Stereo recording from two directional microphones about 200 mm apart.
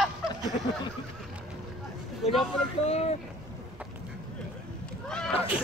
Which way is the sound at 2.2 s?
30° left (ahead or behind).